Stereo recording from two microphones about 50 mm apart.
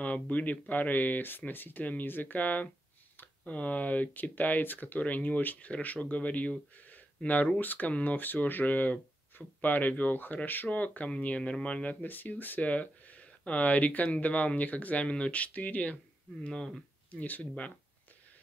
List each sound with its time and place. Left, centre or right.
0.0 s speech: left
16.4 s speech: centre
17.1 s speech: left